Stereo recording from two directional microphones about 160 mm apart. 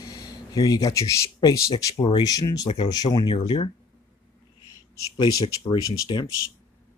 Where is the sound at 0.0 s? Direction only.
25° left (ahead or behind).